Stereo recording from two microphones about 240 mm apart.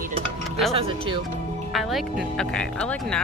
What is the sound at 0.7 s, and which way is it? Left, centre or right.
Speech, right.